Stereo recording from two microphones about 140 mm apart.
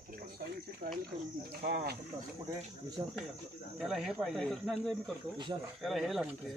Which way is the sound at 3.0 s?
20° right (ahead or behind).